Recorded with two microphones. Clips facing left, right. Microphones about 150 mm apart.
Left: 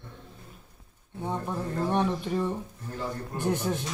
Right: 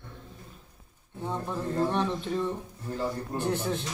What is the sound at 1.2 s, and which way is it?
A man's voice, 15° left (ahead or behind).